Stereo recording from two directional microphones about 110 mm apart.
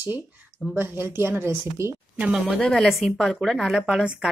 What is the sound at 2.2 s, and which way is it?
A woman's voice, 5° right (ahead or behind).